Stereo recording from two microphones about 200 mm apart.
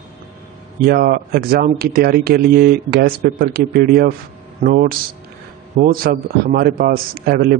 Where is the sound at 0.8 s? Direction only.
50° right (ahead or behind).